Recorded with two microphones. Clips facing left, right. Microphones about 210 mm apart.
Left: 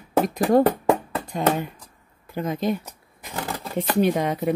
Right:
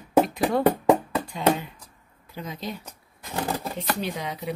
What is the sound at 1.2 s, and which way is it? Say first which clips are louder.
Speech: left 2 dB; 45° left (ahead or behind).